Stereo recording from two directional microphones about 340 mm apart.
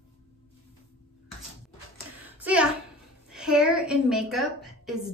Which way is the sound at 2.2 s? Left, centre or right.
Centre.